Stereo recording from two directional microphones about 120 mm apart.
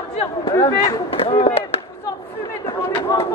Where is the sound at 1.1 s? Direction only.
50° left (ahead or behind).